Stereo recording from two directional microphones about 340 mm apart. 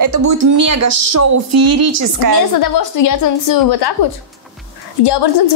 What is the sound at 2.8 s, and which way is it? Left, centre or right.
A woman's voice, left.